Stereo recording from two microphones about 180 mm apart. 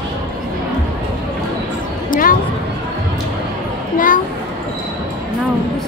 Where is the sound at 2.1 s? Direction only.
50° left (ahead or behind).